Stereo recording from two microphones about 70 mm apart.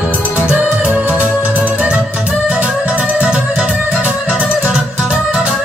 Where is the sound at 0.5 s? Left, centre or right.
Centre.